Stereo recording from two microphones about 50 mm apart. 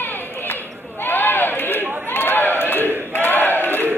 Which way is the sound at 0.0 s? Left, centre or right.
Left.